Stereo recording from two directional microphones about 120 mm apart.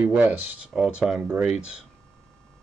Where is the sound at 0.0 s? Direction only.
15° right (ahead or behind).